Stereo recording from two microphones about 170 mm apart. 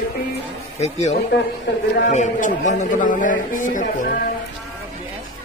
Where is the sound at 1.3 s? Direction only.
90° left.